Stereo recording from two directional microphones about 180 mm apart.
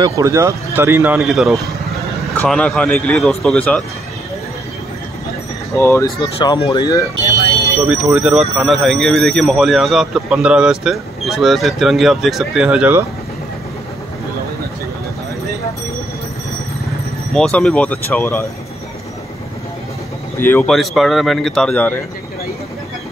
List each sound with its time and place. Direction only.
0.0 s speech: 15° right (ahead or behind)
1.2 s speech: centre (ahead or behind)
5.8 s speech: 10° left (ahead or behind)
6.2 s speech: 25° left (ahead or behind)
7.8 s speech: 5° right (ahead or behind)
17.3 s speech: 5° left (ahead or behind)
20.3 s speech: 10° left (ahead or behind)
20.7 s speech: centre (ahead or behind)